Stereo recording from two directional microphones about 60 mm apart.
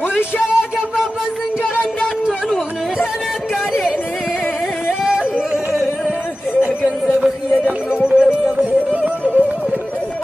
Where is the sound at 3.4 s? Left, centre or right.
Centre.